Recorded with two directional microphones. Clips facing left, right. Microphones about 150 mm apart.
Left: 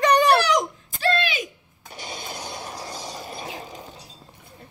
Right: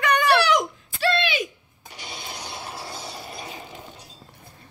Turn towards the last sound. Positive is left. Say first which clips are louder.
# left 2 dB
turn(degrees=40)  # may be behind; listen again after turning